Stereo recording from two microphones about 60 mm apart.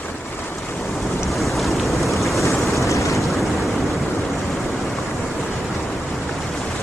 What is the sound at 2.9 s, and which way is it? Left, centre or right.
Vehicle, left.